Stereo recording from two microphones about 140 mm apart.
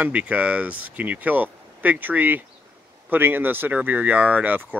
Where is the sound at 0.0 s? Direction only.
10° right (ahead or behind).